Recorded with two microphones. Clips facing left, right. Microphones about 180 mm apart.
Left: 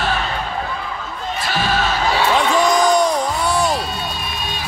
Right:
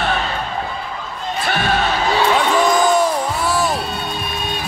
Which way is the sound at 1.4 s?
60° right (ahead or behind).